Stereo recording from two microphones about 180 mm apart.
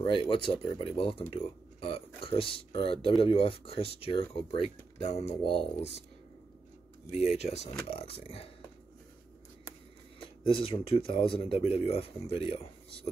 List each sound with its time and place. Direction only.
0.0 s speech: 30° left (ahead or behind)
7.3 s speech: 35° left (ahead or behind)
10.2 s speech: 30° left (ahead or behind)